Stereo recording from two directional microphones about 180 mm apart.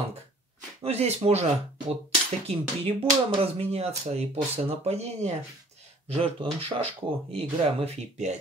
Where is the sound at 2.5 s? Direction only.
35° right (ahead or behind).